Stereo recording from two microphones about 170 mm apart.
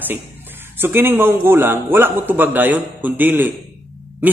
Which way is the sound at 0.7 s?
15° right (ahead or behind).